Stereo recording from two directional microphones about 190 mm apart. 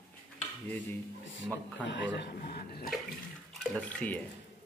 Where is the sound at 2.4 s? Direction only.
55° left (ahead or behind).